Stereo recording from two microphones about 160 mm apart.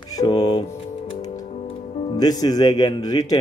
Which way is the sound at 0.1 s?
25° left (ahead or behind).